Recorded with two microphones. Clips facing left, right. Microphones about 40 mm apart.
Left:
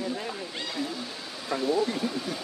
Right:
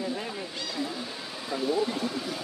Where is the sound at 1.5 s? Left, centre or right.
Left.